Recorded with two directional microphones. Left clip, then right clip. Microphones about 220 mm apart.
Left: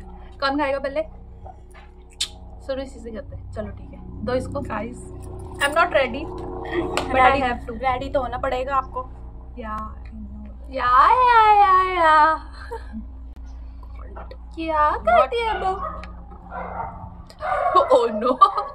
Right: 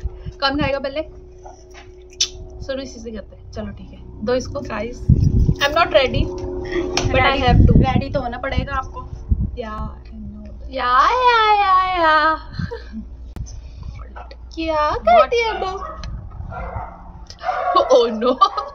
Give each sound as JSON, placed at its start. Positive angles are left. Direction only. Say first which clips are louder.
{"t": 0.2, "sound": "a woman's voice", "louder": "right 2 dB", "side_deg": 0}
{"t": 2.1, "sound": "a sound", "louder": "right 6 dB", "side_deg": 0}
{"t": 4.2, "sound": "a woman's voice", "louder": "right 4 dB", "side_deg": 0}
{"t": 5.6, "sound": "speech", "louder": "right 3 dB", "side_deg": -15}
{"t": 6.6, "sound": "speech", "louder": "right 1 dB", "side_deg": 25}
{"t": 7.1, "sound": "speech", "louder": "even", "side_deg": -20}
{"t": 7.8, "sound": "speech", "louder": "right 1 dB", "side_deg": 20}
{"t": 10.7, "sound": "speech", "louder": "even", "side_deg": 0}
{"t": 14.5, "sound": "speech", "louder": "right 1 dB", "side_deg": -15}
{"t": 17.4, "sound": "speech", "louder": "right 1 dB", "side_deg": 0}